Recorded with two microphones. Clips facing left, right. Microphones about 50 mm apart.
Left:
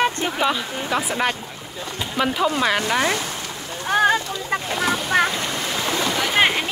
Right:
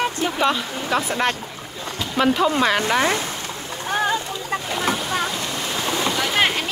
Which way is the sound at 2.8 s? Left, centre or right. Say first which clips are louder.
Right 1 dB; right.